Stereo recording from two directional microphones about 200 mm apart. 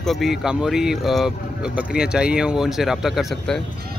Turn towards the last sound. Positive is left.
turn(degrees=0)  # may be behind; listen again after turning